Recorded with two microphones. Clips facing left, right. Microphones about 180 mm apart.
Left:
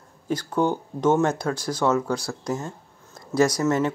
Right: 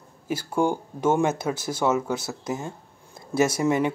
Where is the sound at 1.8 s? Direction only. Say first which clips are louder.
Left 1 dB; 10° right (ahead or behind).